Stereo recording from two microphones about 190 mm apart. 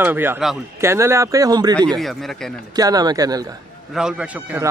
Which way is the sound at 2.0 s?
Centre (ahead or behind).